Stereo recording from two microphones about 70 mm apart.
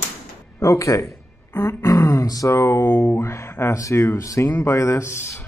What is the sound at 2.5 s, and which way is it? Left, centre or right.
Speech, left.